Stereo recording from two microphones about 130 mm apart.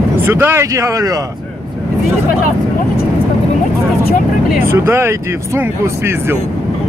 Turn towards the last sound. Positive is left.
turn(degrees=-20)  # may be behind; listen again after turning